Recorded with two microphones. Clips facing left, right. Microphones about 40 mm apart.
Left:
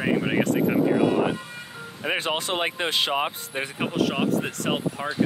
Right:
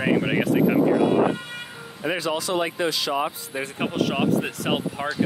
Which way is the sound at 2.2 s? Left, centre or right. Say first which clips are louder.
Right 2 dB; left.